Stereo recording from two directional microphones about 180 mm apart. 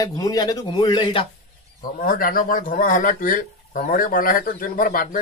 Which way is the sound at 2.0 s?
50° left (ahead or behind).